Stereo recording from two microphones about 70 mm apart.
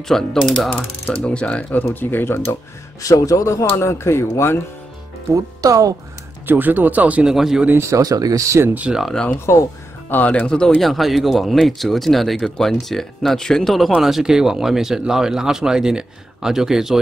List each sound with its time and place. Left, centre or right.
0.4 s speech: centre
1.2 s speech: centre; by 2.5 s left
3.0 s speech: left
5.3 s speech: right
6.4 s speech: right
7.3 s speech: centre
7.7 s speech: right
8.0 s speech: right
8.6 s speech: right
9.1 s speech: centre
10.8 s speech: centre